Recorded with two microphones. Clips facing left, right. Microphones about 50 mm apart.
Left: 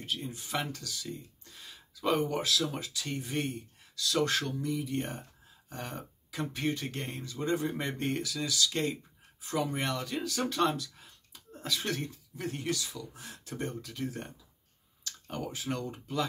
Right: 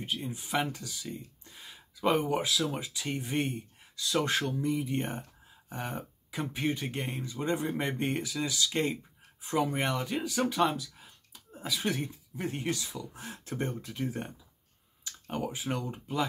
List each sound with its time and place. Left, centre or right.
0.0 s speech: right